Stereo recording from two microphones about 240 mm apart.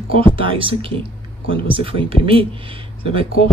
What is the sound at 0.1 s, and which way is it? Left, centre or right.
Speech, right.